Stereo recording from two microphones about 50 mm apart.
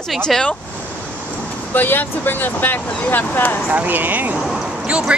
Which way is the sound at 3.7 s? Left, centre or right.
Right.